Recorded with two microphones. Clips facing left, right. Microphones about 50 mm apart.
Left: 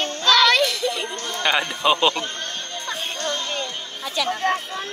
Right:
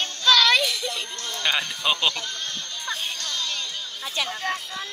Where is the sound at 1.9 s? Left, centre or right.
Left.